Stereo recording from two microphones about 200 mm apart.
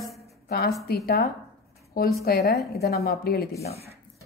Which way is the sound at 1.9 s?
50° left (ahead or behind).